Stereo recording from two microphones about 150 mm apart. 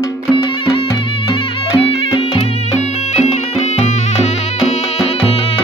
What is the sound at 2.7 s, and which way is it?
Music, 45° left (ahead or behind).